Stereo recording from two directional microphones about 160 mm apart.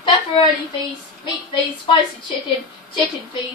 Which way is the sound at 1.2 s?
30° left (ahead or behind).